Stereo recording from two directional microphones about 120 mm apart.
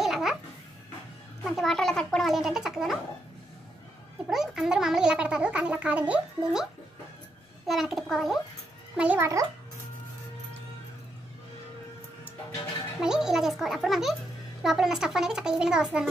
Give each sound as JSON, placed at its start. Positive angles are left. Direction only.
{"t": 0.0, "sound": "babbling", "side_deg": -5}
{"t": 1.4, "sound": "a child's voice", "side_deg": 0}
{"t": 4.3, "sound": "a child's voice", "side_deg": -5}
{"t": 9.2, "sound": "a child's voice", "side_deg": -25}
{"t": 13.0, "sound": "a child's voice", "side_deg": -5}